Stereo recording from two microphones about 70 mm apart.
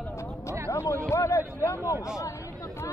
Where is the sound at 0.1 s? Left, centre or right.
Left.